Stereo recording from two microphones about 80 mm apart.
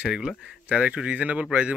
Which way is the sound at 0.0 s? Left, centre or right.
Centre.